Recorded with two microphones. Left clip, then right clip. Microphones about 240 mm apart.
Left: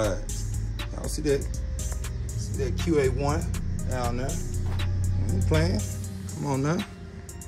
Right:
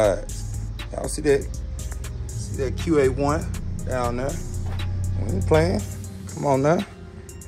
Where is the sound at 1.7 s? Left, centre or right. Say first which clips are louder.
Left 2 dB; centre.